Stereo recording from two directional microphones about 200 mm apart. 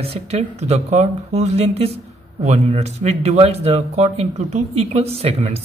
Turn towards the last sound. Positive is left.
turn(degrees=-30)  # may be behind; listen again after turning